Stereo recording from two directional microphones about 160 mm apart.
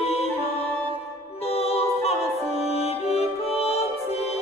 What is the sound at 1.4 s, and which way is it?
Music, 40° left (ahead or behind).